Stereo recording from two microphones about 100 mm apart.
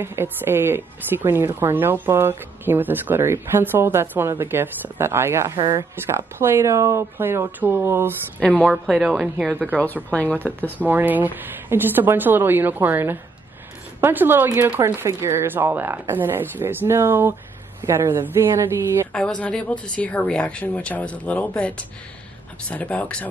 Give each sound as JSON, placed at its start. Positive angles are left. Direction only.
{"t": 0.0, "sound": "a woman's voice", "side_deg": -25}
{"t": 8.4, "sound": "speech", "side_deg": 15}
{"t": 8.6, "sound": "speech", "side_deg": 0}
{"t": 10.0, "sound": "speech", "side_deg": 15}
{"t": 10.9, "sound": "a woman's voice", "side_deg": -20}
{"t": 19.1, "sound": "speech", "side_deg": 10}